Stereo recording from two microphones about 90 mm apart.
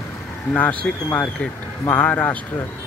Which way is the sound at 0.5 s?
15° left (ahead or behind).